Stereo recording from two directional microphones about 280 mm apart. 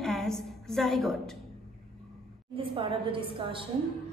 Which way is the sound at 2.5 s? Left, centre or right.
Centre.